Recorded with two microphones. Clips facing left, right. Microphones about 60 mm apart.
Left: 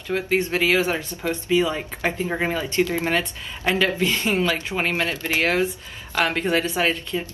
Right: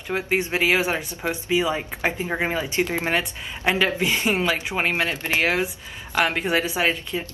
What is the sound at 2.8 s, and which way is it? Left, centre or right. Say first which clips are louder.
Speech: left 1 dB; right.